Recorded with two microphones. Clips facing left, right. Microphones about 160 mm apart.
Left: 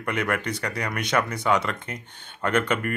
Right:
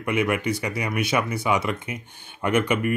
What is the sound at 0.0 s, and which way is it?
Speech, 10° right (ahead or behind).